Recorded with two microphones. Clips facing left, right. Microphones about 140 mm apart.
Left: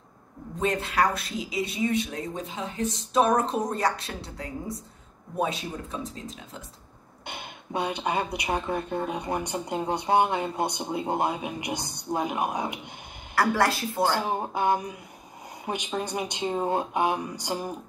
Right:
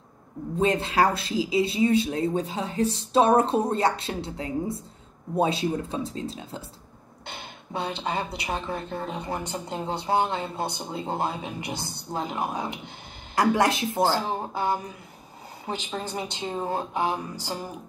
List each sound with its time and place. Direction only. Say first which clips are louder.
0.6 s speech: right 3 dB; 25° right (ahead or behind)
7.2 s speech: left 1 dB; 15° left (ahead or behind)
13.3 s speech: right 2 dB; 20° right (ahead or behind)
14.1 s speech: even; 15° left (ahead or behind)